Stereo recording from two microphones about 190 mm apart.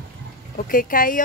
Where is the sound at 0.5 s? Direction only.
45° left (ahead or behind).